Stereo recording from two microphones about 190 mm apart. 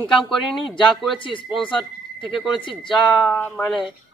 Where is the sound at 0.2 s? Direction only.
Centre (ahead or behind).